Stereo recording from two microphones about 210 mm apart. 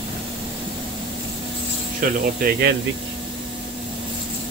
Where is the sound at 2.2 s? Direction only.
45° right (ahead or behind).